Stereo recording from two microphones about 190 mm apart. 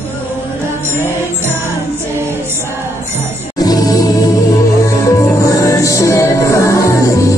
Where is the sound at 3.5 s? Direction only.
20° left (ahead or behind).